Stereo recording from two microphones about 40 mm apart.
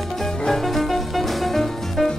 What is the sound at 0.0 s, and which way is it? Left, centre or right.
Music, centre.